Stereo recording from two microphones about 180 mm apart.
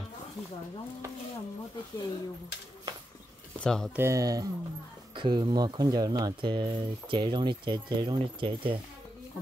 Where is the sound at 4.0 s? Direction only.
15° right (ahead or behind).